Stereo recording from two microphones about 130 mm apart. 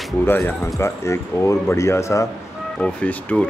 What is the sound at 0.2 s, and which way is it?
Speech, 15° left (ahead or behind).